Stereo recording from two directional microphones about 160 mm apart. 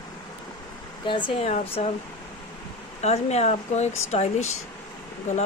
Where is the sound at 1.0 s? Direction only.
30° left (ahead or behind).